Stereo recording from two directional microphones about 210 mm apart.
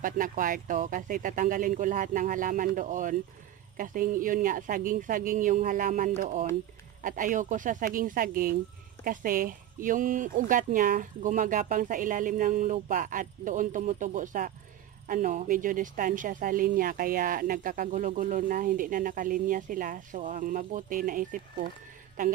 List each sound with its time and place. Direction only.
0.0 s speech: 40° right (ahead or behind)